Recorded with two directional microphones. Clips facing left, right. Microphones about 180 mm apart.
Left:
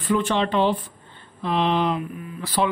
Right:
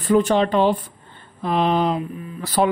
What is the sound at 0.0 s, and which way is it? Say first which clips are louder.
Speech: right 5 dB; 40° right (ahead or behind).